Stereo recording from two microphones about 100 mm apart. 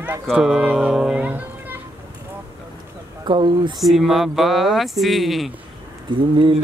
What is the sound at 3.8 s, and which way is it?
Speech, centre (ahead or behind).